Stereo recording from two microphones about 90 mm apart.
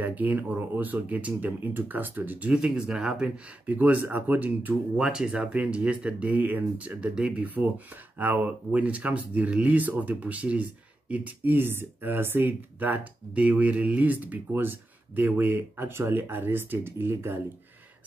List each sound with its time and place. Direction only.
0.0 s speech: 20° right (ahead or behind)
4.9 s speech: 10° right (ahead or behind); by 17.4 s 25° right (ahead or behind)